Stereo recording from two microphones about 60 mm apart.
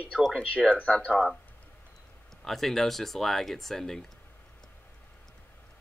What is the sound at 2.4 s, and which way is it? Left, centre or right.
Speech, centre.